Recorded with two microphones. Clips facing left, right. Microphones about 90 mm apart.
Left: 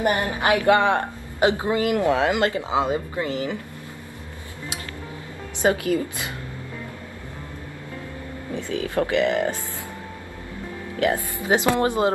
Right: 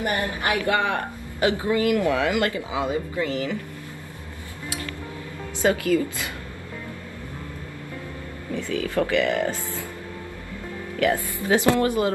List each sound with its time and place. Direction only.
0.0 s a woman's voice: 20° left (ahead or behind)
4.6 s music: 20° left (ahead or behind)
5.6 s a woman's voice: 20° left (ahead or behind)
8.5 s a woman's voice: 20° left (ahead or behind)
11.0 s a woman's voice: 20° left (ahead or behind)